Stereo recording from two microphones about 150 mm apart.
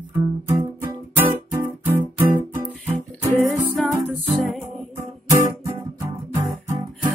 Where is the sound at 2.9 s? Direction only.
15° right (ahead or behind).